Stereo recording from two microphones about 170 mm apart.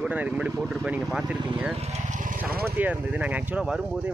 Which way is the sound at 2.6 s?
10° right (ahead or behind).